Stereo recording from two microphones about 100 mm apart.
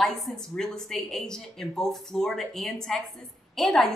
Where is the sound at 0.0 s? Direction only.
5° left (ahead or behind).